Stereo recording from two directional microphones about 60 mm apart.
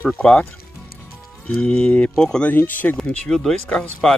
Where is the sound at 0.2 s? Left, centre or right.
Centre.